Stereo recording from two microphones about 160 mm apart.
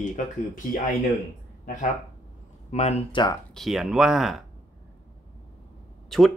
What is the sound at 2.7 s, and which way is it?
Speech, 45° left (ahead or behind).